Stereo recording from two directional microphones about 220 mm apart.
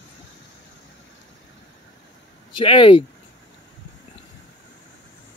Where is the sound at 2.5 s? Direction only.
25° left (ahead or behind).